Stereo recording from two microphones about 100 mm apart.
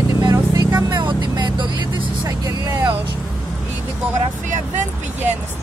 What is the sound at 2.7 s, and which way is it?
Speech, 25° right (ahead or behind).